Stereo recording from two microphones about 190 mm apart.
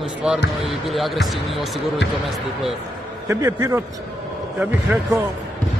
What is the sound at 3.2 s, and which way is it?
Speech, 15° right (ahead or behind).